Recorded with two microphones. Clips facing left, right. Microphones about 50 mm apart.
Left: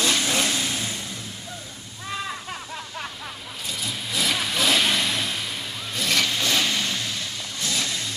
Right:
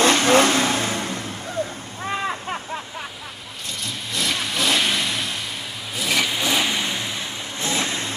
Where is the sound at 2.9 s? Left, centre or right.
Centre.